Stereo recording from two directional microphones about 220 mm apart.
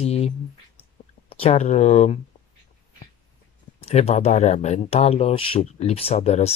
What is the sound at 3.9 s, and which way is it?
Speech, 30° left (ahead or behind).